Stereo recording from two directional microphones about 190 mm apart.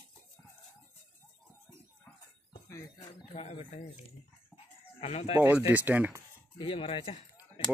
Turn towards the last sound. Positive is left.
turn(degrees=30)  # may be behind; listen again after turning